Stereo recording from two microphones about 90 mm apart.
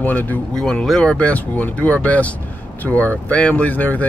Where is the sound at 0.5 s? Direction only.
5° left (ahead or behind).